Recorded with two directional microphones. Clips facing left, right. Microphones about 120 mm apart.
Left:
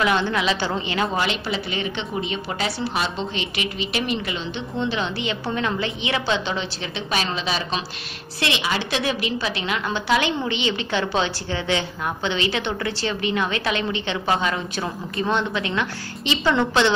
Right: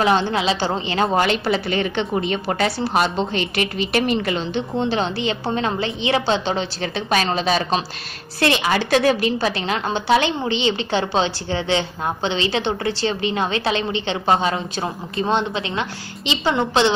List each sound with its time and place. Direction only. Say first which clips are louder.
0.0 s a woman's voice: right 3 dB; 30° right (ahead or behind)
1.1 s a woman's voice: right 6 dB; 50° right (ahead or behind); by 16.9 s 25° right (ahead or behind)